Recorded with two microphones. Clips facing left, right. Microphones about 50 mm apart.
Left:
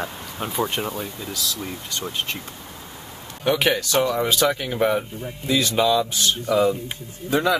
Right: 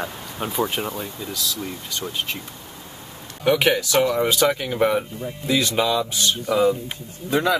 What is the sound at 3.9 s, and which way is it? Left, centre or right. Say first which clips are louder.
Speech: right 1 dB; right.